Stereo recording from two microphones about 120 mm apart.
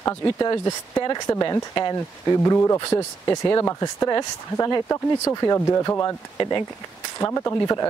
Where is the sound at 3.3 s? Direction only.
40° left (ahead or behind).